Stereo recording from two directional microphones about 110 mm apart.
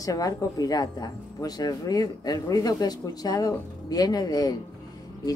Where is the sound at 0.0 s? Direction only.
35° left (ahead or behind).